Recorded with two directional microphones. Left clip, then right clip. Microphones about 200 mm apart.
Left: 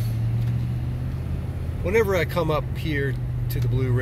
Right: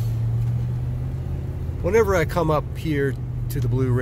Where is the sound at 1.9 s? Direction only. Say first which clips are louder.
Right 2 dB; 35° right (ahead or behind).